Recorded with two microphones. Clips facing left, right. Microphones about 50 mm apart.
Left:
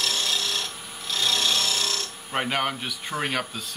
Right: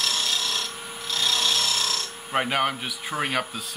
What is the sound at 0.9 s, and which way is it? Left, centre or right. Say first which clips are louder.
Tools: even; centre.